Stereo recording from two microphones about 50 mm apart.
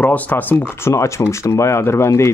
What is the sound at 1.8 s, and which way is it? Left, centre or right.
Speech, left.